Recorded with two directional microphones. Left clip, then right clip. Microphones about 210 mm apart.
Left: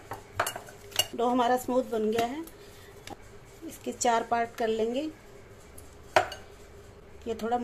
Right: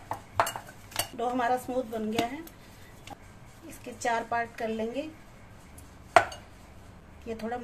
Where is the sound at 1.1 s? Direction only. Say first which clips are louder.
Left 2 dB; 30° left (ahead or behind).